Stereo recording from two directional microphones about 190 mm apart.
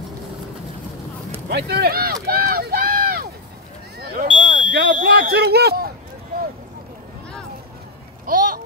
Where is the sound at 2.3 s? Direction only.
50° right (ahead or behind).